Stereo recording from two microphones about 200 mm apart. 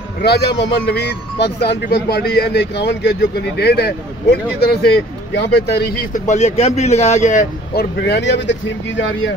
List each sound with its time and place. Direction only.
0.2 s speech: 55° left (ahead or behind); by 7.8 s 40° left (ahead or behind)
8.0 s speech: 60° left (ahead or behind)